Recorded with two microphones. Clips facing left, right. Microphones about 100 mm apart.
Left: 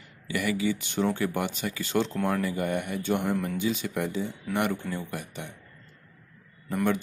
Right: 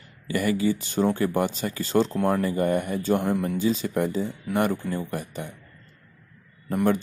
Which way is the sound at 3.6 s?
35° right (ahead or behind).